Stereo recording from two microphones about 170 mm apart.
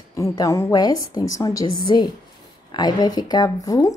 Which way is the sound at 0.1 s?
20° left (ahead or behind).